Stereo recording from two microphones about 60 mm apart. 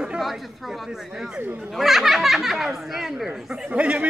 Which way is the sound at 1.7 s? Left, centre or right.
Centre.